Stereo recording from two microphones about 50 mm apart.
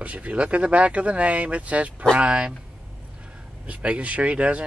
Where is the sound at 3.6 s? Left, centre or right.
Right.